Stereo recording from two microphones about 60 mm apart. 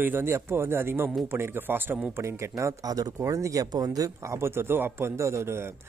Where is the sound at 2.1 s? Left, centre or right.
Right.